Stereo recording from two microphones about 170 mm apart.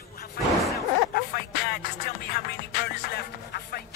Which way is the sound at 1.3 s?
65° left (ahead or behind).